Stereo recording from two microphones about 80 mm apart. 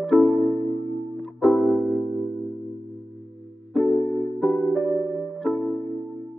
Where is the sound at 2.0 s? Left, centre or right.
Right.